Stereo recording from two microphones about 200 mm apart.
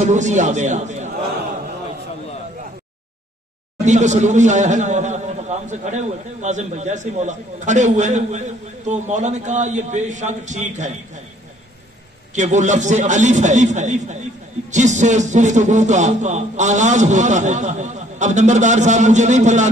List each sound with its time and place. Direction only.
0.0 s a man's voice: 35° right (ahead or behind)
3.8 s a man's voice: 35° right (ahead or behind)
12.4 s a man's voice: 35° right (ahead or behind)